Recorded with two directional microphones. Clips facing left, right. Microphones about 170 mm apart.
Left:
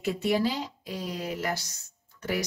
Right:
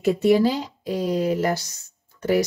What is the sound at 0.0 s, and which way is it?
Speech, 40° right (ahead or behind).